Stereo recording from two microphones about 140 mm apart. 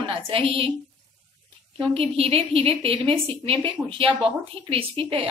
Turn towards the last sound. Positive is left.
turn(degrees=-40)  # may be behind; listen again after turning